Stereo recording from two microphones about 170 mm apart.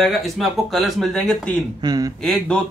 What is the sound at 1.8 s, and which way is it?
Speech, 20° right (ahead or behind).